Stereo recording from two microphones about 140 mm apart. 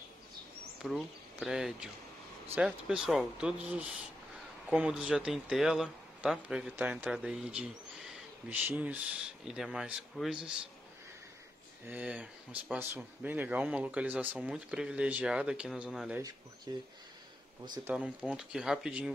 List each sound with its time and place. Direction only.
0.8 s speech: 5° right (ahead or behind)
11.9 s speech: 10° right (ahead or behind)
16.2 s speech: 25° right (ahead or behind)
17.8 s speech: 10° right (ahead or behind)